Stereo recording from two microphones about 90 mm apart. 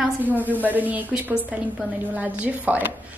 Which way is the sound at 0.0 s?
20° right (ahead or behind).